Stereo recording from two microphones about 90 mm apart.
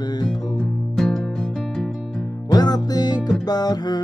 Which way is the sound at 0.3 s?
5° left (ahead or behind).